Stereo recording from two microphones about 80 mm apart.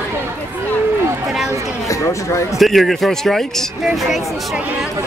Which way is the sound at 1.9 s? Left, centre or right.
Left.